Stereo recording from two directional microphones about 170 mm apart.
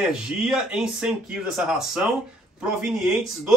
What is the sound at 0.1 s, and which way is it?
Speech, 5° right (ahead or behind).